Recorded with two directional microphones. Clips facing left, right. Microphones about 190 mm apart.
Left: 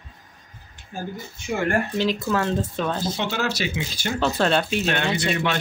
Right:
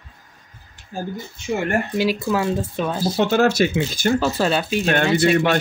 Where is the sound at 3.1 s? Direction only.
50° right (ahead or behind).